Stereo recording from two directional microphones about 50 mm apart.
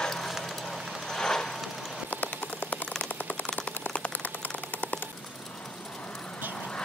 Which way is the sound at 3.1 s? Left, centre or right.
Left.